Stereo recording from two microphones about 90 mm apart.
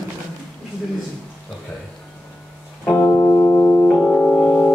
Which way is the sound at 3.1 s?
45° left (ahead or behind).